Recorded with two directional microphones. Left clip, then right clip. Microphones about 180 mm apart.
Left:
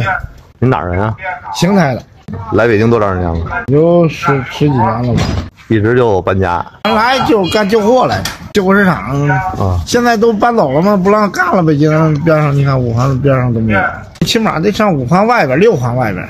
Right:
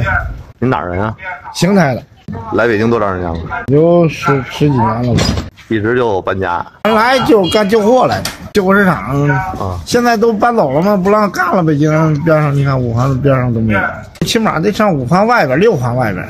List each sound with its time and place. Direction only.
0.6 s a man's voice: 5° left (ahead or behind)
5.1 s speech: 70° right (ahead or behind)
5.7 s speech: 10° left (ahead or behind)
6.8 s a man's voice: 20° right (ahead or behind); by 16.2 s centre (ahead or behind)